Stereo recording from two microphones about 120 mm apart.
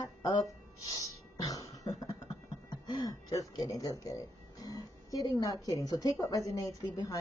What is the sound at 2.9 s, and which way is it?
A woman's voice, 30° left (ahead or behind).